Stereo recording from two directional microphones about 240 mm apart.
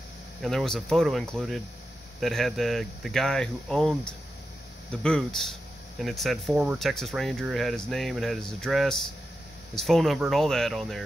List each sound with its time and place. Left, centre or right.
0.4 s speech: centre